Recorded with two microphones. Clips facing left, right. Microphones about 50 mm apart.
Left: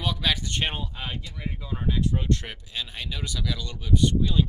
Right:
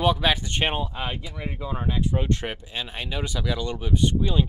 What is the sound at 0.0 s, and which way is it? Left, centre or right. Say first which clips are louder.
Speech: right 6 dB; right.